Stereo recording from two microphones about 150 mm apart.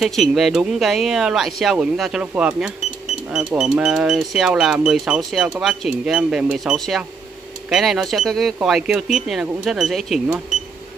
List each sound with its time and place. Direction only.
0.0 s speech: centre (ahead or behind)